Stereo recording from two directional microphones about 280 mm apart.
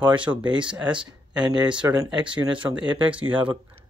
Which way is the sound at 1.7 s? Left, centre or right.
Centre.